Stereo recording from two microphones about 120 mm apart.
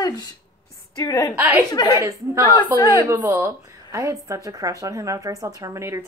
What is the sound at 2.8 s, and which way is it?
Speech, 35° left (ahead or behind).